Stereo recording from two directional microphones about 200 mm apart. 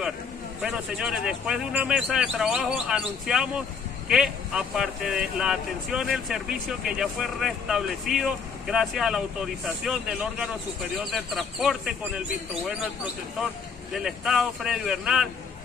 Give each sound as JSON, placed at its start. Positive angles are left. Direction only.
{"t": 0.6, "sound": "speech", "side_deg": -5}